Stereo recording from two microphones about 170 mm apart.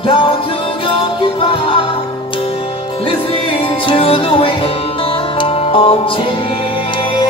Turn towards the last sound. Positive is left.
turn(degrees=30)  # may be behind; listen again after turning